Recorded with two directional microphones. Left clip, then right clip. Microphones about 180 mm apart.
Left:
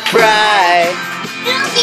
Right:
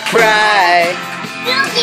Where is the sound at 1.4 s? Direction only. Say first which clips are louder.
Right 1 dB; 30° right (ahead or behind).